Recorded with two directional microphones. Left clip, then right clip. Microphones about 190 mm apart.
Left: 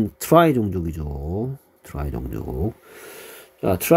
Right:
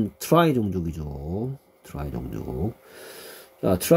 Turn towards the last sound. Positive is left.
turn(degrees=30)  # may be behind; listen again after turning